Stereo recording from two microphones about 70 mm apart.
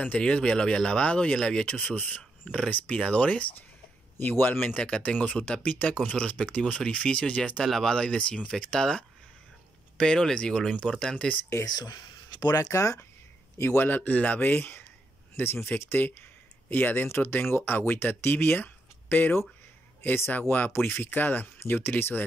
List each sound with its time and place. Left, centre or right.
0.0 s speech: centre
11.6 s speech: left
12.7 s speech: left
13.6 s speech: left